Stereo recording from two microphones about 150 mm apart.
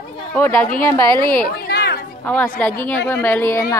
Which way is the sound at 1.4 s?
90° left.